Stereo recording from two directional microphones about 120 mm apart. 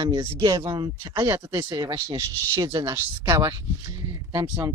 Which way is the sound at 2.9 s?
20° right (ahead or behind).